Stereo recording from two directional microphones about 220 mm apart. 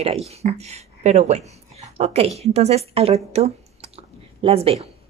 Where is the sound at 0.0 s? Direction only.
25° right (ahead or behind).